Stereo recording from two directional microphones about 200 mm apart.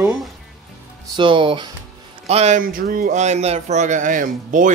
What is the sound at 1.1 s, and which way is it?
Speech, 25° right (ahead or behind).